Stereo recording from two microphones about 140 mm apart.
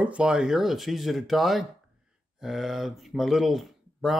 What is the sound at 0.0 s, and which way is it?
Speech, 5° right (ahead or behind).